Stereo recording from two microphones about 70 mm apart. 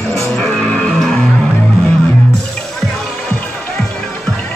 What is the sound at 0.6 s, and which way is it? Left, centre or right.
Music, centre.